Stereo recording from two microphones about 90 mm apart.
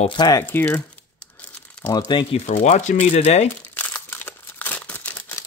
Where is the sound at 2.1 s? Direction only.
60° left (ahead or behind).